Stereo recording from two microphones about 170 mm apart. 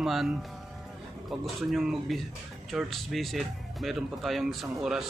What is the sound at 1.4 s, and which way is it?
Speech, centre (ahead or behind).